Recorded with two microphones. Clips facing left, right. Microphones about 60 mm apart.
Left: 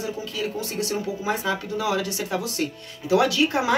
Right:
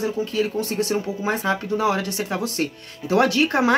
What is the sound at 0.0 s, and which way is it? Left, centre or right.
Speech, right.